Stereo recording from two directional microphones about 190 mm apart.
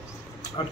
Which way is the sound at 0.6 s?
25° left (ahead or behind).